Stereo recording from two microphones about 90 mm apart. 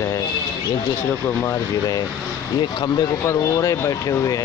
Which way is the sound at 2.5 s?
55° left (ahead or behind).